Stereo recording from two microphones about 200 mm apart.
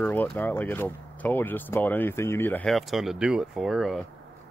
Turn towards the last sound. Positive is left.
turn(degrees=0)  # may be behind; listen again after turning